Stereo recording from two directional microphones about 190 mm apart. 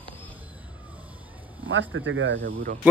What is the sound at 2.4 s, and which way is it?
Speech, 50° right (ahead or behind).